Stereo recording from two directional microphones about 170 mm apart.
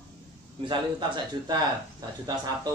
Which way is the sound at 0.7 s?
25° right (ahead or behind).